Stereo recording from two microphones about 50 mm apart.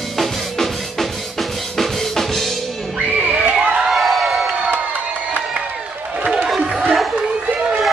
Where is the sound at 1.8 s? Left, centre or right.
Centre.